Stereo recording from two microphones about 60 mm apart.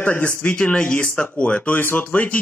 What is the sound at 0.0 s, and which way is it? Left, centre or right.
Speech, left.